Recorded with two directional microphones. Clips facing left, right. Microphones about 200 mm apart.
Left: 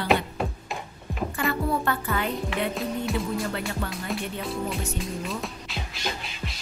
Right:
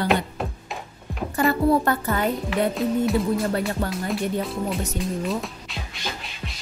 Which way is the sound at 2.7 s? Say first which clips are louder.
Right 6 dB; centre (ahead or behind).